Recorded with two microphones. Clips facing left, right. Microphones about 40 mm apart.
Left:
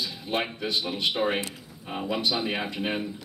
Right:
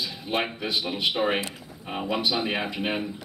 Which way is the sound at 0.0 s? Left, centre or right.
Centre.